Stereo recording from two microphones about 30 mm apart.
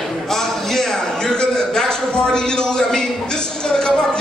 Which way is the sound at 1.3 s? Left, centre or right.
Left.